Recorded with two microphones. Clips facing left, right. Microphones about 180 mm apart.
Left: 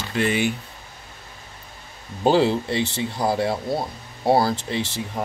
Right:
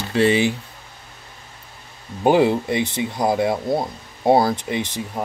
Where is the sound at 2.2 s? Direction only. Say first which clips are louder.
Right 2 dB; 15° right (ahead or behind).